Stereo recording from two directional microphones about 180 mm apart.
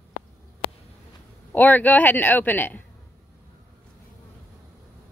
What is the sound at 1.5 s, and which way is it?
A man's voice, 10° left (ahead or behind).